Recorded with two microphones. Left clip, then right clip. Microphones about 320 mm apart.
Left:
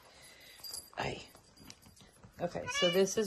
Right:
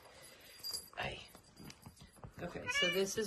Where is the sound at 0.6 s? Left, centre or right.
Centre.